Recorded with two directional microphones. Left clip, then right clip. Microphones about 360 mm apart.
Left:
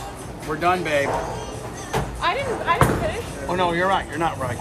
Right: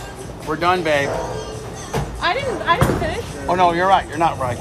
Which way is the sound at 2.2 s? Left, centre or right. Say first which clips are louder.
Right 4 dB; right.